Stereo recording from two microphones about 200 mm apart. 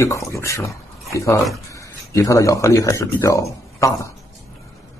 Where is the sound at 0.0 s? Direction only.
15° left (ahead or behind).